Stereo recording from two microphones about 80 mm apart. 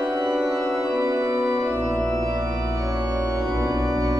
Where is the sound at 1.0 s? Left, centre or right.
Right.